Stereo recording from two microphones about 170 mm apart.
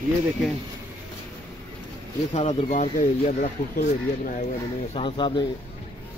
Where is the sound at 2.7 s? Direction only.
45° left (ahead or behind).